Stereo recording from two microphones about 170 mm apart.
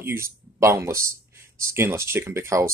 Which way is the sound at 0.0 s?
15° right (ahead or behind).